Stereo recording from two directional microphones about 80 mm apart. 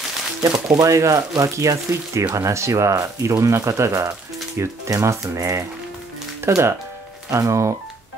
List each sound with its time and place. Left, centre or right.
0.7 s speech: right